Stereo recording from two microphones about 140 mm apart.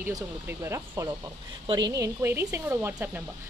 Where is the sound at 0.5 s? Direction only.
20° right (ahead or behind).